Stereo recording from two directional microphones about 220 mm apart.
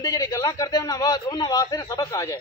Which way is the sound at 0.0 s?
15° left (ahead or behind).